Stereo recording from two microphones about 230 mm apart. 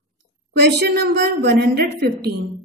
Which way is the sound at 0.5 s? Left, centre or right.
Right.